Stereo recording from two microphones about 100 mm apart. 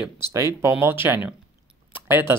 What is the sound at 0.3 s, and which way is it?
Speech, 30° right (ahead or behind).